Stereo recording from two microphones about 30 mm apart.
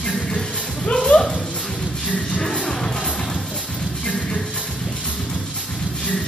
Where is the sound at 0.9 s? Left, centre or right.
Left.